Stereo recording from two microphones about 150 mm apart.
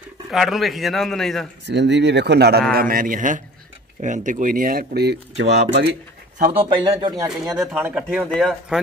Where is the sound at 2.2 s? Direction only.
90° right.